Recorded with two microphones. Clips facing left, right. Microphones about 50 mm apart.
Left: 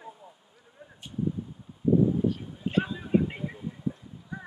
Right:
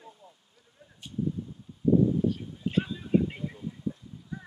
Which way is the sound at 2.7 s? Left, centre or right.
Left.